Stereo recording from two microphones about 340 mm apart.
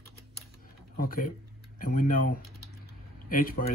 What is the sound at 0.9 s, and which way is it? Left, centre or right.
Speech, left.